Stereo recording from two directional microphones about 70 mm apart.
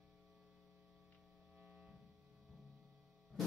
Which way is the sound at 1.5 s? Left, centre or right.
Centre.